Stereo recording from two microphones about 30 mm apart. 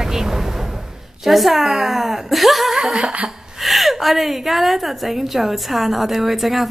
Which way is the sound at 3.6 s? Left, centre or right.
Centre.